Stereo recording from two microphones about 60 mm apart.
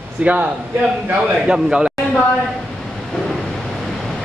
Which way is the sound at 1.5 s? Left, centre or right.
Centre.